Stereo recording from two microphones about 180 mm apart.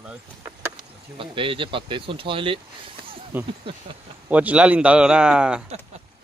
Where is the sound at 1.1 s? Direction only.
30° right (ahead or behind).